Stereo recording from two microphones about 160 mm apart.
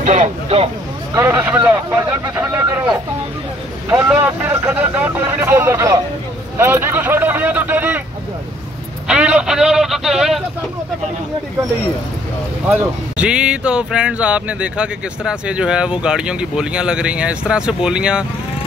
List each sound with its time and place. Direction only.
0.0 s speech: 50° right (ahead or behind)
1.1 s speech: 15° right (ahead or behind)
3.9 s speech: 20° right (ahead or behind)
6.6 s a sound: 15° right (ahead or behind)
9.0 s vehicle: 5° right (ahead or behind)
12.6 s speech: 10° right (ahead or behind)